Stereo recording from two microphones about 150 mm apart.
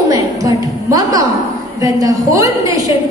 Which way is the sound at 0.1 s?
25° right (ahead or behind).